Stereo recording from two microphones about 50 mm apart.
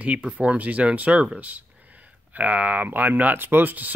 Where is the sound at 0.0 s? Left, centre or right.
Right.